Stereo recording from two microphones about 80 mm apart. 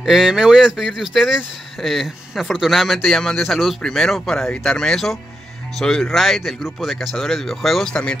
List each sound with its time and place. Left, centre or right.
0.0 s speech: centre